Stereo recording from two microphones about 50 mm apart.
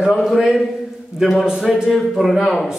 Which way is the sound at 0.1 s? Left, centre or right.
Centre.